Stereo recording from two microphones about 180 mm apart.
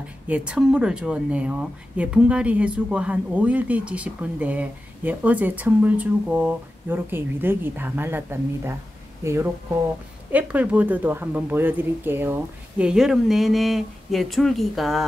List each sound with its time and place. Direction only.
0.3 s speech: 5° right (ahead or behind)